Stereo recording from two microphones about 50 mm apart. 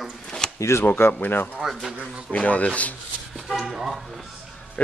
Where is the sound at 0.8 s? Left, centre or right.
Left.